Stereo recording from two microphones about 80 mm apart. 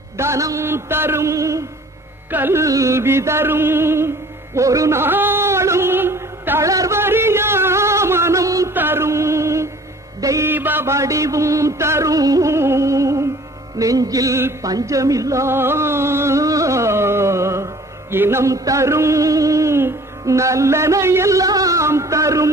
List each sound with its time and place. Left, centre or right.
0.2 s music: right
2.3 s carnatic music: right
2.6 s music: right
4.6 s a sound: right
6.6 s music: right
7.0 s music: right
8.7 s music: right
10.4 s a sound: right
10.9 s music: right
18.1 s a sound: right